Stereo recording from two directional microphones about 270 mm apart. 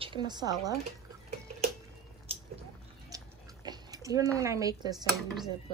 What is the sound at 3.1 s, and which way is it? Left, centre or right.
Chewing, centre.